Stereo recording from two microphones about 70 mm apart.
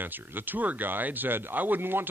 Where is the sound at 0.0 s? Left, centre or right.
Right.